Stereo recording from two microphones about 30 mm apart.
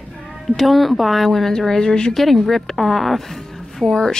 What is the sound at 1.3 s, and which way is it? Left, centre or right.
Speech, centre.